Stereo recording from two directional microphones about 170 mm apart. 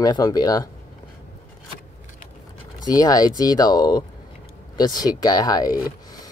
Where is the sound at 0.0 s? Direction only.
20° left (ahead or behind).